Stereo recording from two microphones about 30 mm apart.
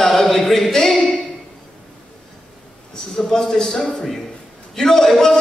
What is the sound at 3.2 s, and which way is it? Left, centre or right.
Speech, centre.